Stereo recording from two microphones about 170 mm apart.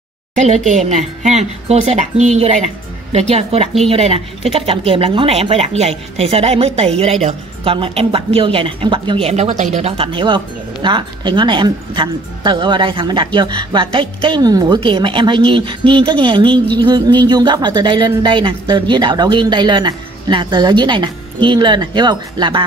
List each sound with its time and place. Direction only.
0.4 s a woman's voice: 45° right (ahead or behind); by 22.6 s 25° right (ahead or behind)